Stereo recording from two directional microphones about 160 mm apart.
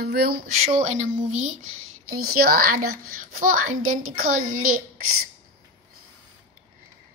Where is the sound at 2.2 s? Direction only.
70° right (ahead or behind).